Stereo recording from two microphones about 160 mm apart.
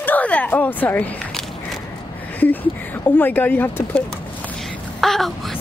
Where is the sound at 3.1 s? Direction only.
10° left (ahead or behind).